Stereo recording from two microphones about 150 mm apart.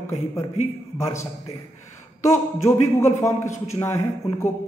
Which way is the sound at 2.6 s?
20° left (ahead or behind).